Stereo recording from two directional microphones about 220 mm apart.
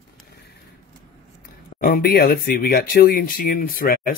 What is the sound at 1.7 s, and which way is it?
Speech, 40° left (ahead or behind).